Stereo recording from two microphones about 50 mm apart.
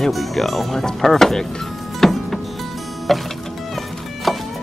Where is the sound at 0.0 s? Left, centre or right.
Centre.